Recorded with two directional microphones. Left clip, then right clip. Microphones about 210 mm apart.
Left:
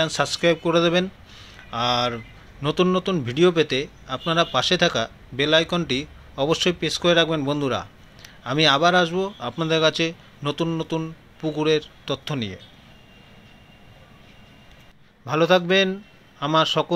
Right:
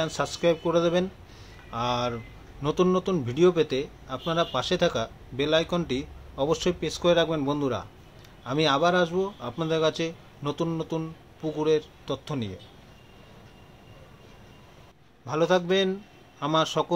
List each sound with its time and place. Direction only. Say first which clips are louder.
0.0 s speech: left 5 dB; 10° left (ahead or behind)
15.2 s a man's voice: left 5 dB; 15° left (ahead or behind)